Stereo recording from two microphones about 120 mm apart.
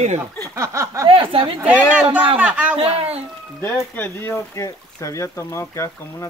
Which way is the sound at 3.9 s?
15° left (ahead or behind).